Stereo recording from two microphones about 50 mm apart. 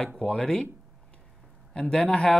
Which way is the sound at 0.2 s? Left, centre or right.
Centre.